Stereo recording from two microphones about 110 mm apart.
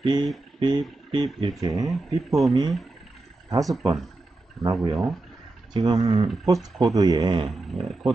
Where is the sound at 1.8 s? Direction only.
Centre (ahead or behind).